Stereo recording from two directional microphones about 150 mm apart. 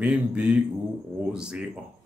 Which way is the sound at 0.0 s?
10° right (ahead or behind).